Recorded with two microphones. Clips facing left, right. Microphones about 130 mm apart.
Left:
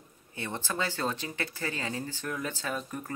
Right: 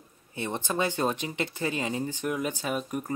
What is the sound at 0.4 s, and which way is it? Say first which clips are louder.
Speech: right 5 dB; 20° right (ahead or behind).